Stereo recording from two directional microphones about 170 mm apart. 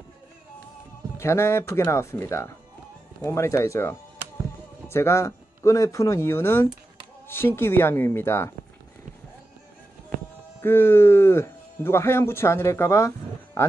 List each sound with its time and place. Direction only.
1.1 s speech: 15° left (ahead or behind)
10.6 s speech: 15° left (ahead or behind)